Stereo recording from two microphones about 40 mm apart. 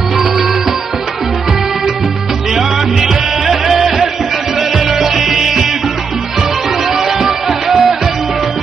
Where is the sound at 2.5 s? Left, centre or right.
Centre.